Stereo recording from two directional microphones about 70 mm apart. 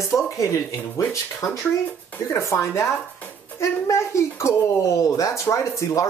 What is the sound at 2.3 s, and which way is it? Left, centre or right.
Speech, left.